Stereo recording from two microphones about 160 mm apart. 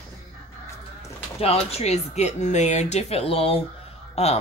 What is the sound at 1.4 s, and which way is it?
A woman's voice, 40° left (ahead or behind).